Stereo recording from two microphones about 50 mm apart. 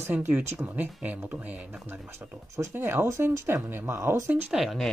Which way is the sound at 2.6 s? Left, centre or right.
Right.